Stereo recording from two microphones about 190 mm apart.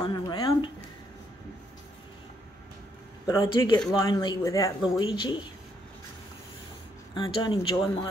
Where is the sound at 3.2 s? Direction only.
15° left (ahead or behind).